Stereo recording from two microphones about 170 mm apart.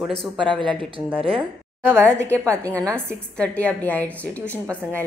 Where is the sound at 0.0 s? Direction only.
Centre (ahead or behind).